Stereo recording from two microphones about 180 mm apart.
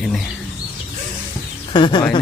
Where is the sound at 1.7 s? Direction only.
25° left (ahead or behind).